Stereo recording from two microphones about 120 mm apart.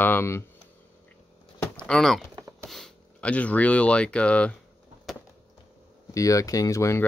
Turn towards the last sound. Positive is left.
turn(degrees=25)  # may be behind; listen again after turning